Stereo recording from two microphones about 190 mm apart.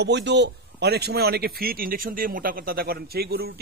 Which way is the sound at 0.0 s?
65° right (ahead or behind).